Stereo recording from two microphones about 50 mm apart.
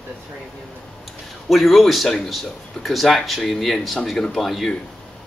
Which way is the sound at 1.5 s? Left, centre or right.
Centre.